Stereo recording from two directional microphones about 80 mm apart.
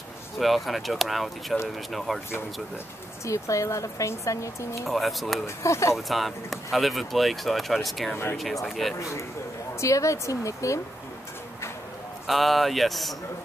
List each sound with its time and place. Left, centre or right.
0.4 s speech: centre
3.3 s speech: left
4.8 s speech: centre
5.6 s speech: left
5.9 s speech: centre
9.8 s speech: left
12.3 s speech: centre